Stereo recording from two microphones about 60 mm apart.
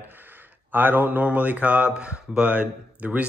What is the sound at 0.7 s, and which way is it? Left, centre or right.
Speech, right.